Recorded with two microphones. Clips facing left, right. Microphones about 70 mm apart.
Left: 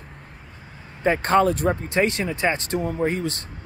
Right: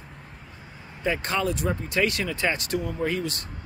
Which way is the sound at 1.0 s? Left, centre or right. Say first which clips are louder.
Left 8 dB; left.